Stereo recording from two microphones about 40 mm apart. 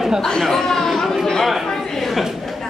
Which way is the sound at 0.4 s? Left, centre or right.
Centre.